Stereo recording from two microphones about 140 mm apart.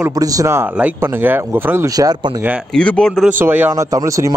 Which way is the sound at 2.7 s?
5° left (ahead or behind).